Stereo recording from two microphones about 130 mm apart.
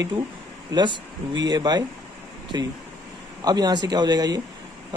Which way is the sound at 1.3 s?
35° right (ahead or behind).